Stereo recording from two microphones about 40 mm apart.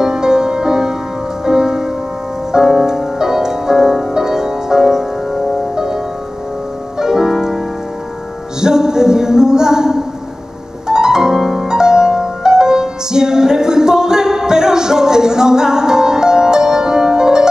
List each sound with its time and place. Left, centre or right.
0.0 s music: centre
7.0 s music: centre